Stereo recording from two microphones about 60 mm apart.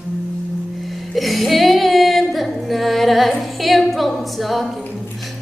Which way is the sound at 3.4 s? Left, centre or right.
Centre.